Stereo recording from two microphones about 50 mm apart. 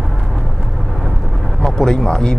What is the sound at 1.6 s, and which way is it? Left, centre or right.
Speech, centre.